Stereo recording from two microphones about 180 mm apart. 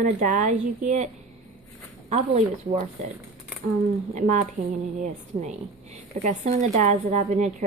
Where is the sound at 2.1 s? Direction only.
40° right (ahead or behind).